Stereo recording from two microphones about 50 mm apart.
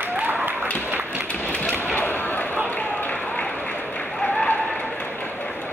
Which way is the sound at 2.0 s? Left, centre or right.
Left.